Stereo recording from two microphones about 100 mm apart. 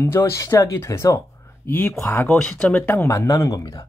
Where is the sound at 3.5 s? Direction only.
35° left (ahead or behind).